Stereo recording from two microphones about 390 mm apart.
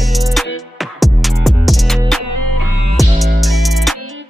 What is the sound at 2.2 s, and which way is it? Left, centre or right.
Music, right.